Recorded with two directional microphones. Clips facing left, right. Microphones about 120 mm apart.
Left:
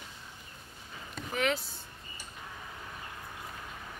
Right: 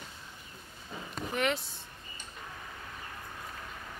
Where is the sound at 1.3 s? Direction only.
Centre (ahead or behind).